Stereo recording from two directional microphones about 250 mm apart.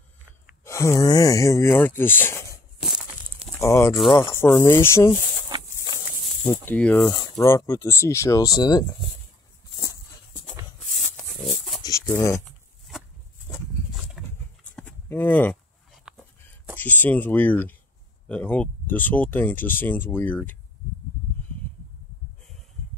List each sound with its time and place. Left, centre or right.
0.7 s speech: centre
2.9 s walk: right
3.4 s speech: centre
6.4 s speech: centre
11.0 s a sound: centre
12.1 s speech: centre
14.1 s a sound: centre
16.1 s dog: centre
16.7 s speech: centre